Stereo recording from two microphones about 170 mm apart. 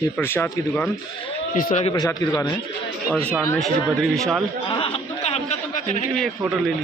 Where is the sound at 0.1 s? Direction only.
10° left (ahead or behind).